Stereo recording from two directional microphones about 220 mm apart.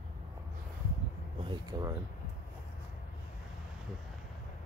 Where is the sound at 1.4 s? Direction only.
15° right (ahead or behind).